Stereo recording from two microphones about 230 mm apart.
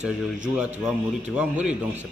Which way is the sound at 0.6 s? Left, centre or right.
Centre.